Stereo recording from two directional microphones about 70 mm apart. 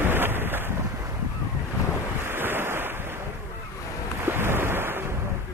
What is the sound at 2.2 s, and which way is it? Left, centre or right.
Waves, right.